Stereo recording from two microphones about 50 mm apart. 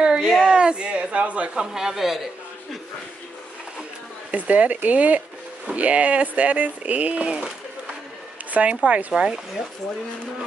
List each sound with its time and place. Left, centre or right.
0.0 s a sound: centre
1.6 s speech: centre
4.3 s speech: right